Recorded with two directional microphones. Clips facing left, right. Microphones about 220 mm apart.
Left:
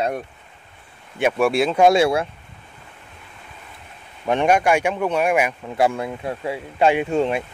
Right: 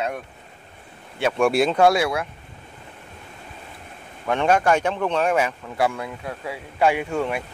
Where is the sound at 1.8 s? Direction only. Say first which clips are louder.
Left 3 dB; 25° left (ahead or behind).